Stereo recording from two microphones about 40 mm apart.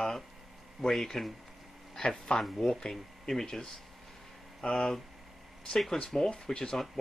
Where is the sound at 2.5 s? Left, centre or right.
Centre.